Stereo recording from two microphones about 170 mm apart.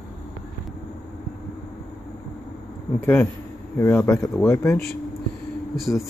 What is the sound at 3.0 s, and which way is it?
Speech, 15° left (ahead or behind).